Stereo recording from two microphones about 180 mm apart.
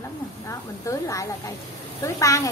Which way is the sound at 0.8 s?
15° left (ahead or behind).